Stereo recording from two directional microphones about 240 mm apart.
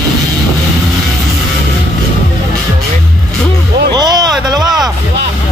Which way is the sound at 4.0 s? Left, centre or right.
Centre.